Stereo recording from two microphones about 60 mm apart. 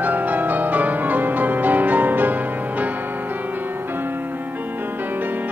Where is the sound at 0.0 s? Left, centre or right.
Right.